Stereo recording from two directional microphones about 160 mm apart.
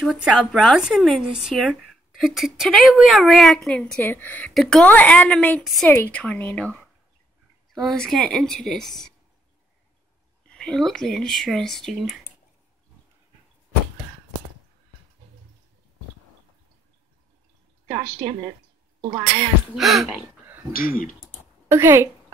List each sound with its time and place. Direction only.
0.0 s a woman's voice: centre (ahead or behind)
5.6 s speech: centre (ahead or behind)
5.9 s a woman's voice: 10° left (ahead or behind)
10.5 s speech: 5° left (ahead or behind)
18.2 s a woman's voice: 35° right (ahead or behind)
19.7 s speech: centre (ahead or behind)
20.7 s speech: 65° left (ahead or behind)
21.6 s a woman's voice: 15° right (ahead or behind)